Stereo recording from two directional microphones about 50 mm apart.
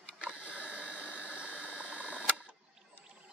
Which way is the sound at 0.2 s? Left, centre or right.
Right.